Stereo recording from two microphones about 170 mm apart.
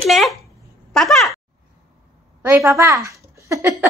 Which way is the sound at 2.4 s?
15° right (ahead or behind).